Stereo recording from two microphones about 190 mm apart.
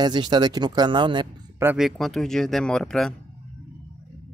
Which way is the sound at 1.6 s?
5° right (ahead or behind).